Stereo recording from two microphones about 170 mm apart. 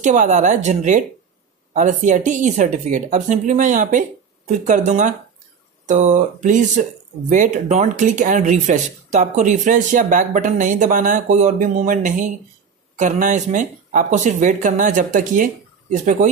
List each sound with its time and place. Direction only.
0.0 s speech: 45° right (ahead or behind)